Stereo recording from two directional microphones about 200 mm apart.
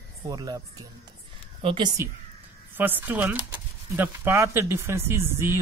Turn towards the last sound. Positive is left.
turn(degrees=-10)  # may be behind; listen again after turning